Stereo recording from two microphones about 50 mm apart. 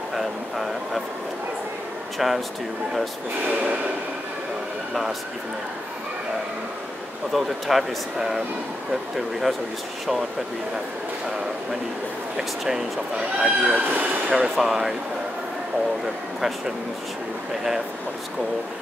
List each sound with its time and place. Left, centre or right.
0.1 s a sound: centre
2.1 s speech: centre
7.3 s speech: centre
12.4 s speech: centre
13.7 s speech: right
14.3 s speech: centre
16.3 s speech: centre